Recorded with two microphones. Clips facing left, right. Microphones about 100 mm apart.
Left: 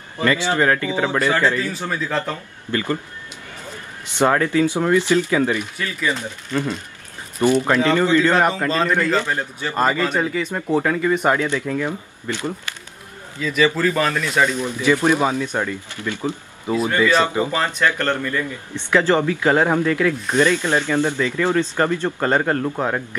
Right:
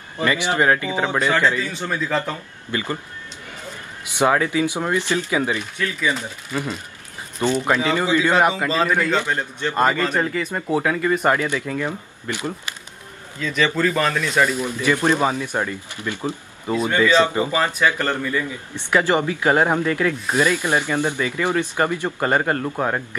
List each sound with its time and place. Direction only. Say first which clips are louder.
0.2 s speech: left 1 dB; 20° right (ahead or behind)
1.6 s a man's voice: left 1 dB; 5° left (ahead or behind)
2.7 s speech: left 3 dB; 15° right (ahead or behind)
4.0 s speech: left 1 dB; 10° right (ahead or behind)
5.8 s a man's voice: even; centre (ahead or behind)
13.4 s a man's voice: left 2 dB; 5° left (ahead or behind)
15.2 s speech: left 1 dB; 10° right (ahead or behind)
16.6 s a man's voice: even; centre (ahead or behind)
17.4 s a man's voice: even; 5° right (ahead or behind)